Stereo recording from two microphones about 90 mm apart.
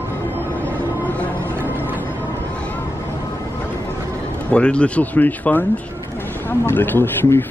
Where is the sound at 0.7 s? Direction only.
15° left (ahead or behind).